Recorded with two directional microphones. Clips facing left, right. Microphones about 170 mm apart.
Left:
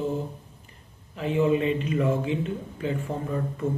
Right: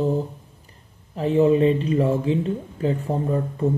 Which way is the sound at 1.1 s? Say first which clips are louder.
Right 6 dB; 40° right (ahead or behind).